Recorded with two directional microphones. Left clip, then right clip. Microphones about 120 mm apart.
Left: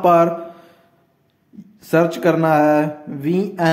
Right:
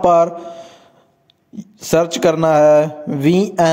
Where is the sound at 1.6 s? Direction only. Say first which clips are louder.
Right 1 dB; 90° right.